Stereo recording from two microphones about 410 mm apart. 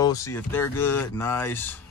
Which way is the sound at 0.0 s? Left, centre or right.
Centre.